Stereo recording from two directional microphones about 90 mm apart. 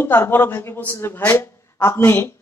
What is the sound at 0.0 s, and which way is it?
A woman's voice, 25° left (ahead or behind).